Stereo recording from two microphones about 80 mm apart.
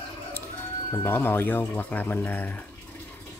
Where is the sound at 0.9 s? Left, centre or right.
Left.